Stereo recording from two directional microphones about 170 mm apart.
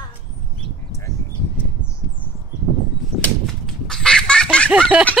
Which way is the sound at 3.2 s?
5° left (ahead or behind).